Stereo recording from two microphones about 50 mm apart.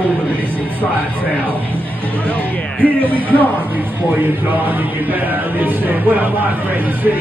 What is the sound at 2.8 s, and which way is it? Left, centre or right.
Speech, right.